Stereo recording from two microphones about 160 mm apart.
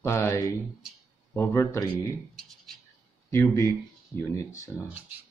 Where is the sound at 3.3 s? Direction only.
15° left (ahead or behind).